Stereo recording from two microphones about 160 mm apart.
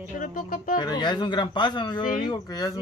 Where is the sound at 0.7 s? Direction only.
25° left (ahead or behind).